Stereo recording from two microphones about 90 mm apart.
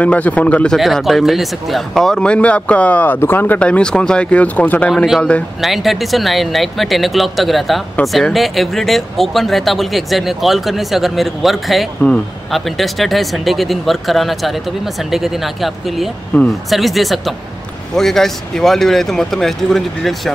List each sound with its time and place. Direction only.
0.0 s speech: 15° left (ahead or behind)
0.7 s speech: centre (ahead or behind)
5.6 s speech: centre (ahead or behind)
16.3 s speech: 20° left (ahead or behind)
16.7 s speech: centre (ahead or behind)